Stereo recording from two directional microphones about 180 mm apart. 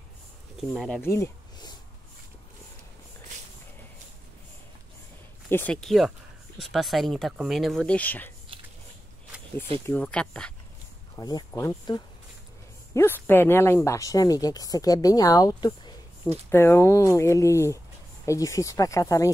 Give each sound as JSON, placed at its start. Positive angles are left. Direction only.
{"t": 0.7, "sound": "speech", "side_deg": 5}
{"t": 1.0, "sound": "a sound", "side_deg": 15}
{"t": 5.5, "sound": "speech", "side_deg": 10}
{"t": 8.5, "sound": "biting", "side_deg": -30}
{"t": 9.3, "sound": "a sound", "side_deg": -5}
{"t": 9.8, "sound": "speech", "side_deg": 5}
{"t": 11.1, "sound": "speech", "side_deg": 20}